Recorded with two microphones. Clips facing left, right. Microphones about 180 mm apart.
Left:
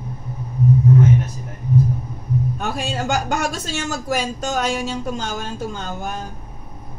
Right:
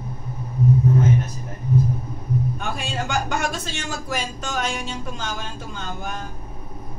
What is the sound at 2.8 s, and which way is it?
Speech, 45° left (ahead or behind).